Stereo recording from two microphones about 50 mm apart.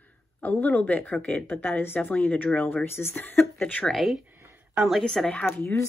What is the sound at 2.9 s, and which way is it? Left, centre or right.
Speech, left.